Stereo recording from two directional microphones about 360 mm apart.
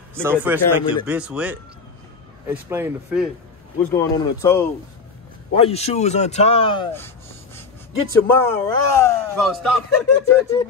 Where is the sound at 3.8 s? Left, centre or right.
Centre.